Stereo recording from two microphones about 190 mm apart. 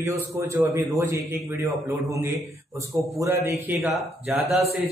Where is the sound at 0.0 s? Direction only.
15° right (ahead or behind).